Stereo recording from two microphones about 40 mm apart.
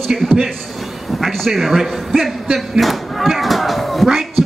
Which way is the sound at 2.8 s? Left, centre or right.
Centre.